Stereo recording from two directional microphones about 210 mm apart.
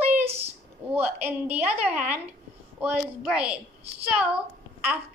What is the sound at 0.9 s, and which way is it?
A woman's voice, 10° right (ahead or behind).